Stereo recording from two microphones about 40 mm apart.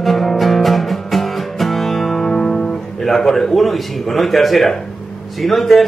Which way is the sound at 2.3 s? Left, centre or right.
Centre.